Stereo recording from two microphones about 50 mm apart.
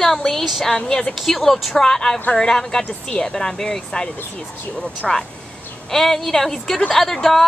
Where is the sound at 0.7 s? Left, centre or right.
Centre.